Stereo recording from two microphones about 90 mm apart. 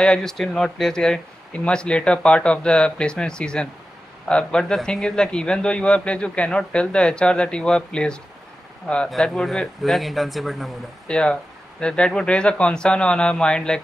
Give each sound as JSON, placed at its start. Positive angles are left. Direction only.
{"t": 0.0, "sound": "a man's voice", "side_deg": 10}
{"t": 11.1, "sound": "a man's voice", "side_deg": 10}